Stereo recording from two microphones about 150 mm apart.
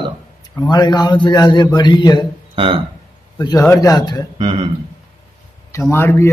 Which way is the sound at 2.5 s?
35° right (ahead or behind).